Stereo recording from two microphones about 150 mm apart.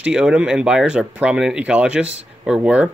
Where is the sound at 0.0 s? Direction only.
5° right (ahead or behind).